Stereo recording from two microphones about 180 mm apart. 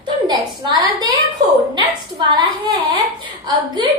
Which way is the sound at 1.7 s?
25° right (ahead or behind).